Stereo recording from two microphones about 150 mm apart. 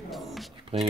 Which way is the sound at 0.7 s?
40° right (ahead or behind).